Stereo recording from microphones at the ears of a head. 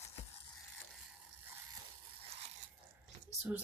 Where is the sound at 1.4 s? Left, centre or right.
Right.